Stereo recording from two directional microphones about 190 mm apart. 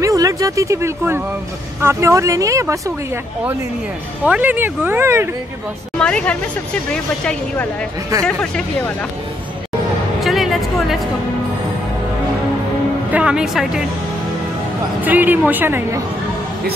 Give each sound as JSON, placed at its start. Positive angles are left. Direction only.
{"t": 0.0, "sound": "speech", "side_deg": -15}
{"t": 4.3, "sound": "speech", "side_deg": -10}
{"t": 5.9, "sound": "a woman's voice", "side_deg": 5}
{"t": 10.2, "sound": "a sound", "side_deg": 0}
{"t": 13.1, "sound": "a woman's voice", "side_deg": -5}
{"t": 15.0, "sound": "speech", "side_deg": -10}